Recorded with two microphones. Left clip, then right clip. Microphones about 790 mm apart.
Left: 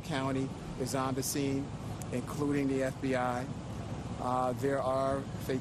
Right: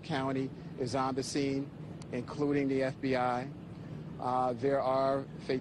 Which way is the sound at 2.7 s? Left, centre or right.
Left.